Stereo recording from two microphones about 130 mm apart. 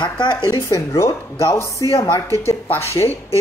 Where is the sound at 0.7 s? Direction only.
25° left (ahead or behind).